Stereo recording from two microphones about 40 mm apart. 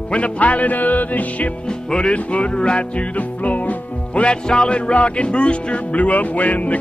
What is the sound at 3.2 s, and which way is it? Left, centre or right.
Music, left.